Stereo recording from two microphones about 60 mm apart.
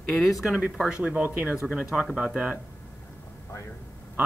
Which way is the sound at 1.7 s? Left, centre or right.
Centre.